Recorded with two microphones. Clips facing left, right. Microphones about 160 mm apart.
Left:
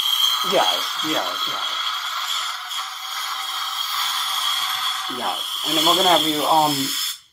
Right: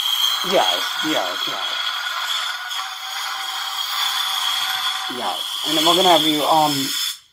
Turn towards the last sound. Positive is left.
turn(degrees=0)  # may be behind; listen again after turning